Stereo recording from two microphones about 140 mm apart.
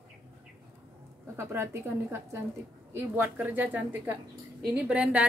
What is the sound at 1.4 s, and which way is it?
Speech, 15° right (ahead or behind).